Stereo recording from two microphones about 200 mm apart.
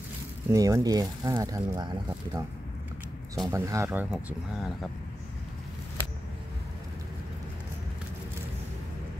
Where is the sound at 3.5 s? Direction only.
15° right (ahead or behind).